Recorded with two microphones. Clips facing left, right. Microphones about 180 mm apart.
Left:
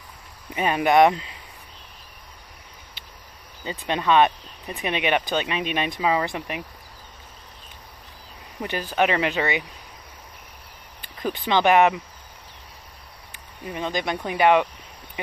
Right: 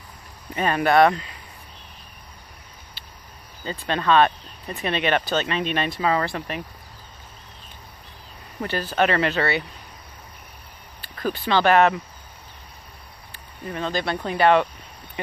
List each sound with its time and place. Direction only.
0.6 s speech: 15° left (ahead or behind)
3.6 s speech: 15° left (ahead or behind)
8.5 s speech: 15° left (ahead or behind)
11.1 s speech: 15° left (ahead or behind)
13.3 s speech: 15° left (ahead or behind)